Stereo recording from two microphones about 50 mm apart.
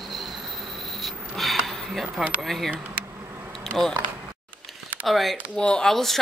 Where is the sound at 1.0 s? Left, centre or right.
Centre.